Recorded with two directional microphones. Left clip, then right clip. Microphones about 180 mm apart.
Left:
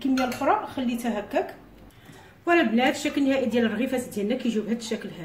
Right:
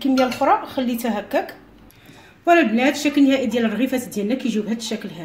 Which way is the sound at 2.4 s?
35° right (ahead or behind).